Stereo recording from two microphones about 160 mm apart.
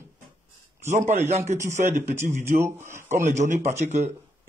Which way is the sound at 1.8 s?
60° right (ahead or behind).